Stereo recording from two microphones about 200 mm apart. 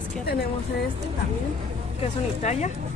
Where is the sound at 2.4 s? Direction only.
35° left (ahead or behind).